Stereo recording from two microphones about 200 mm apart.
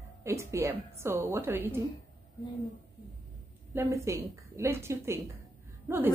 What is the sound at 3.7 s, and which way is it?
A woman's voice, 15° right (ahead or behind).